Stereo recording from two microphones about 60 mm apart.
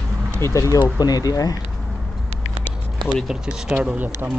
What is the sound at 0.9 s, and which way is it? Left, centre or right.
Speech, left.